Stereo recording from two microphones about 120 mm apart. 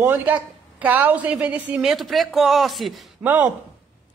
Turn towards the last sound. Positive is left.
turn(degrees=-15)  # may be behind; listen again after turning